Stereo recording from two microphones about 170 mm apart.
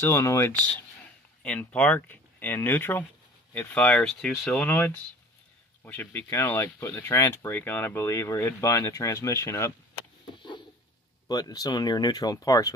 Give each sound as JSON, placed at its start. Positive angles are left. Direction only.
{"t": 0.0, "sound": "speech", "side_deg": 15}
{"t": 11.2, "sound": "speech", "side_deg": 20}